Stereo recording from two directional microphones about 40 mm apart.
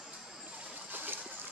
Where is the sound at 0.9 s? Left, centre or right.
Right.